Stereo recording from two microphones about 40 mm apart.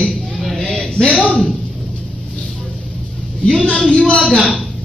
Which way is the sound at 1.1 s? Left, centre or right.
Left.